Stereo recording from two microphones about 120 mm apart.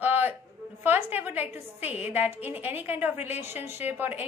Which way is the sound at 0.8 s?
15° right (ahead or behind).